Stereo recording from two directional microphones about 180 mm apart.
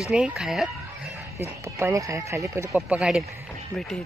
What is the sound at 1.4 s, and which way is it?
Speech, 15° right (ahead or behind).